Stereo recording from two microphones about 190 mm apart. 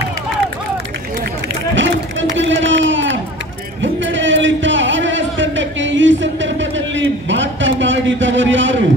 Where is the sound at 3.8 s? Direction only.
80° right.